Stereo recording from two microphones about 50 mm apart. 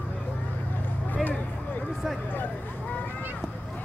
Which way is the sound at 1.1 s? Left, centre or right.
Left.